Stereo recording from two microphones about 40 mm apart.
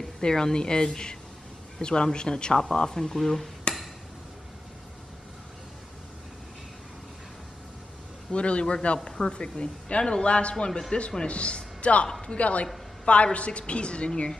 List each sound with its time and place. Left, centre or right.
0.2 s a woman's voice: centre
3.7 s chop: left
8.3 s a woman's voice: left
12.1 s a woman's voice: centre
12.4 s a woman's voice: left